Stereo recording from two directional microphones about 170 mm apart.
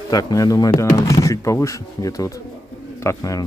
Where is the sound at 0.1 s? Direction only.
20° left (ahead or behind).